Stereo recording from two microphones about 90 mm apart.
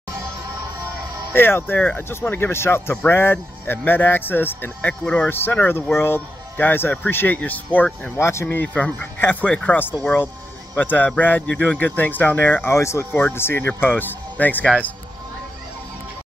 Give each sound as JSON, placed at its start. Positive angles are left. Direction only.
{"t": 1.3, "sound": "speech", "side_deg": 25}
{"t": 8.2, "sound": "speech", "side_deg": 30}
{"t": 12.7, "sound": "speech", "side_deg": 30}